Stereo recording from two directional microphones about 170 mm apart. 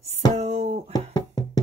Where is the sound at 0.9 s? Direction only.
25° left (ahead or behind).